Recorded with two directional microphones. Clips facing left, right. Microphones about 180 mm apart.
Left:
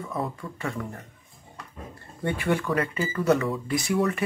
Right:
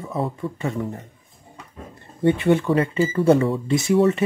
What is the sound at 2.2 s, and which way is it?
Speech, 25° right (ahead or behind).